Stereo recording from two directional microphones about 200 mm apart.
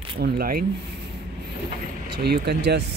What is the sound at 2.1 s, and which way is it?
Speech, 55° right (ahead or behind).